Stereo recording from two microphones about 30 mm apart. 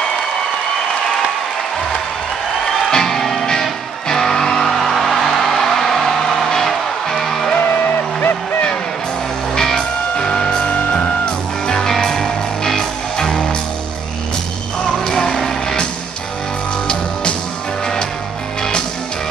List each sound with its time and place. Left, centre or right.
2.9 s music: centre
4.7 s music: centre
9.6 s music: centre
10.1 s music: left
10.7 s music: left
11.6 s music: left
11.9 s music: centre
15.0 s music: left